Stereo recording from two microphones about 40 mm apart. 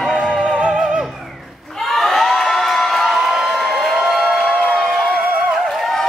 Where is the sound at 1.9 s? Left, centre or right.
Centre.